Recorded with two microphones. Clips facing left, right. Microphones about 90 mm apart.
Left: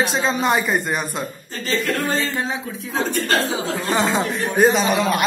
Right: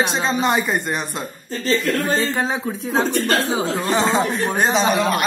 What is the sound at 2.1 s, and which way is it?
Speech, 30° right (ahead or behind).